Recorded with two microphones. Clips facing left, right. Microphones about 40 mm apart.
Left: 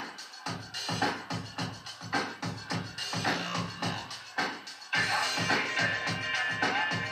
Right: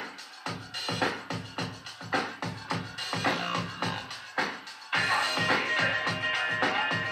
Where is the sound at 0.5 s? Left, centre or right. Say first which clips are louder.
Right 1 dB; right.